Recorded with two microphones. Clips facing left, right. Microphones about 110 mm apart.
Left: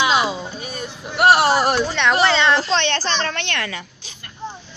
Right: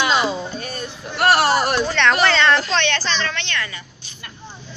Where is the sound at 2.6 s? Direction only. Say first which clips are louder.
Left 1 dB; 30° left (ahead or behind); by 3.8 s 70° left (ahead or behind).